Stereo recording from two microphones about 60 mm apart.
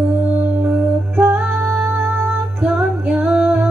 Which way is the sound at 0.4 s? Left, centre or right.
Right.